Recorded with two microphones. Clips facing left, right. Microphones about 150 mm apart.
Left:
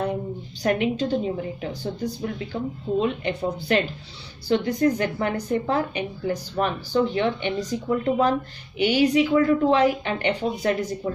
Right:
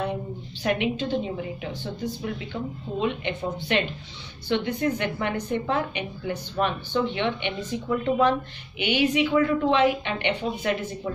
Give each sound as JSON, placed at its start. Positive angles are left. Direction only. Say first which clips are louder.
{"t": 0.6, "sound": "a woman's voice", "louder": "left 3 dB", "side_deg": 40}